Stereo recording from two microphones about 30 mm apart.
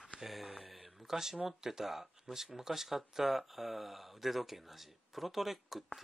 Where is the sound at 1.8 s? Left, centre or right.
Centre.